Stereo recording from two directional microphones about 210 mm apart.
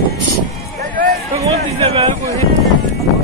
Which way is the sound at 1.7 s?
25° right (ahead or behind).